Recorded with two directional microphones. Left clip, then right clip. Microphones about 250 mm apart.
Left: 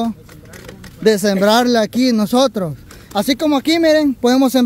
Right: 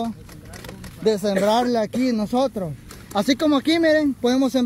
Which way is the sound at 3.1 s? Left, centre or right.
Centre.